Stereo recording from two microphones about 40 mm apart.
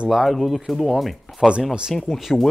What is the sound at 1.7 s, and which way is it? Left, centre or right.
Speech, centre.